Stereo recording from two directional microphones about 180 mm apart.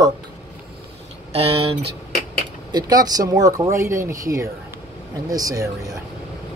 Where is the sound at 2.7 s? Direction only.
20° right (ahead or behind).